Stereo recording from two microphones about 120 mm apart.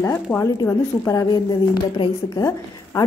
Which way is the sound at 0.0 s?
20° left (ahead or behind).